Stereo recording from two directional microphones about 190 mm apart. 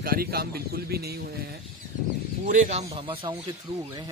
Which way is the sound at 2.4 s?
40° right (ahead or behind).